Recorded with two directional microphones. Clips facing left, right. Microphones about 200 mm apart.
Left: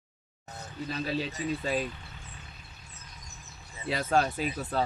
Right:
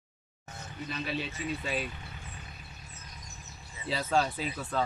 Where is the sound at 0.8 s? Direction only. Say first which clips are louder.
Left 3 dB; 35° left (ahead or behind).